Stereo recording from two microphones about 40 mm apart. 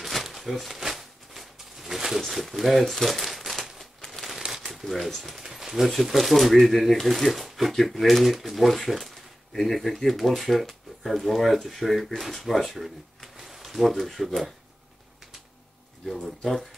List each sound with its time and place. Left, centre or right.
0.0 s a sound: centre
2.5 s crumpling: centre
4.5 s speech: centre
16.1 s speech: centre